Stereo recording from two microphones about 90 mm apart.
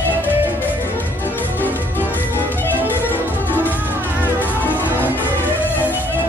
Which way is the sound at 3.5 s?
20° right (ahead or behind).